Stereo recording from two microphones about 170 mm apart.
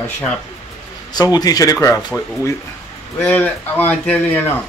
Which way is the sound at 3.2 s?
10° left (ahead or behind).